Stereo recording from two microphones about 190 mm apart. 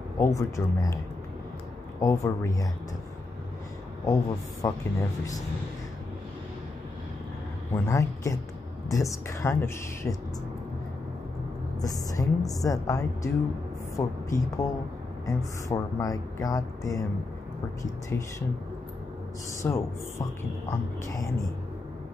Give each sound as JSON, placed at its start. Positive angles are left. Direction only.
{"t": 0.2, "sound": "speech", "side_deg": 15}
{"t": 2.0, "sound": "speech", "side_deg": 15}
{"t": 4.0, "sound": "speech", "side_deg": 20}
{"t": 7.7, "sound": "speech", "side_deg": 15}
{"t": 11.8, "sound": "speech", "side_deg": 20}
{"t": 18.1, "sound": "speech", "side_deg": 15}
{"t": 19.6, "sound": "speech", "side_deg": 15}